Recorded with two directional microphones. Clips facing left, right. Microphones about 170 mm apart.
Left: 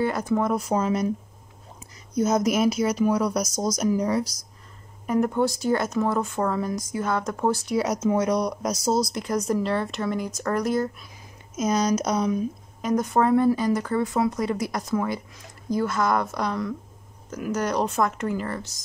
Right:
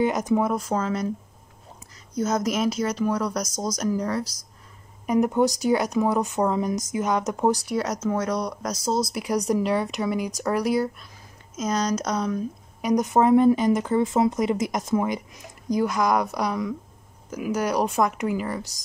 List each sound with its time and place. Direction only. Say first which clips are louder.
0.0 s speech: right 2 dB; 15° right (ahead or behind)
0.6 s speech: left 2 dB; 15° left (ahead or behind)
2.1 s speech: left 3 dB; 10° left (ahead or behind)
5.0 s speech: right 2 dB; 15° right (ahead or behind)
7.6 s speech: left 2 dB; 5° left (ahead or behind)
9.1 s speech: right 1 dB; 10° right (ahead or behind)
11.5 s speech: left 2 dB; 10° left (ahead or behind)
12.8 s speech: right 2 dB; 15° right (ahead or behind)